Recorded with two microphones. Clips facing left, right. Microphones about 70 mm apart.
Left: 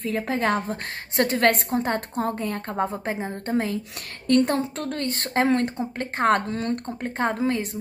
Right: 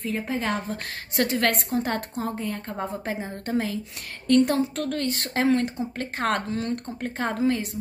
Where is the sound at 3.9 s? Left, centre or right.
Left.